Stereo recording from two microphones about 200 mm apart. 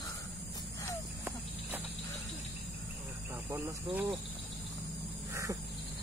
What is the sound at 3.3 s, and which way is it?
Cricket, 15° right (ahead or behind).